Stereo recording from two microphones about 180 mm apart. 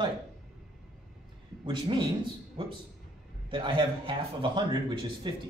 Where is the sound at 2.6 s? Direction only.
30° right (ahead or behind).